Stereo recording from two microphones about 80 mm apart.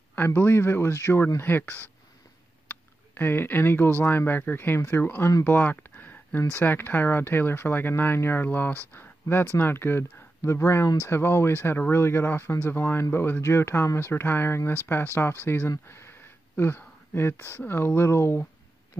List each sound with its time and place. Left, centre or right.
0.1 s speech: left